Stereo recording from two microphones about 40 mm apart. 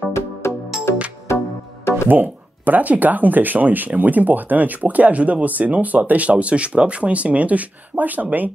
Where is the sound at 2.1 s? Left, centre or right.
Right.